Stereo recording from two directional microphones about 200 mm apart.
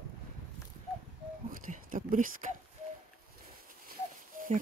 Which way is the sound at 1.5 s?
40° right (ahead or behind).